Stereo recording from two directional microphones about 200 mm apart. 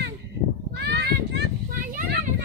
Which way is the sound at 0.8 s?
55° right (ahead or behind).